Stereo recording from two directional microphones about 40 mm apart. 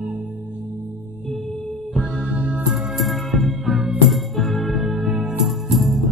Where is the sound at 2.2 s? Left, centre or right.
Right.